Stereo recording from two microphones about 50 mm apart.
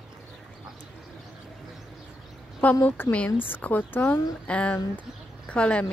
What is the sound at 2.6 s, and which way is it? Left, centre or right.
Speech, left.